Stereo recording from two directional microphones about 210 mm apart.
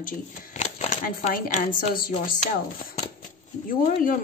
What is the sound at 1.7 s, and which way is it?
Speech, 40° left (ahead or behind).